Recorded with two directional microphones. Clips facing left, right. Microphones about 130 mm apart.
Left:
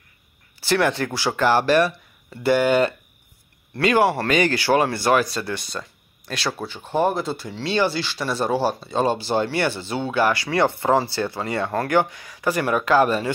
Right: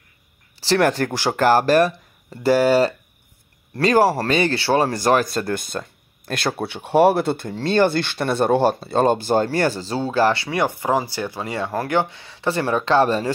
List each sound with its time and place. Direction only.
0.6 s speech: 40° right (ahead or behind)
6.6 s speech: 70° right (ahead or behind); by 10.3 s 35° right (ahead or behind)
10.3 s speech: 20° right (ahead or behind)